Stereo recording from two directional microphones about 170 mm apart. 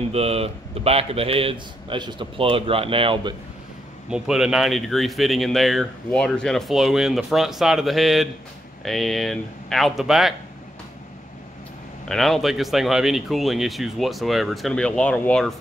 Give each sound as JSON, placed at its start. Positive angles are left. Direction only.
{"t": 0.1, "sound": "a man's voice", "side_deg": -35}
{"t": 4.1, "sound": "speech", "side_deg": -5}
{"t": 12.1, "sound": "speech", "side_deg": 0}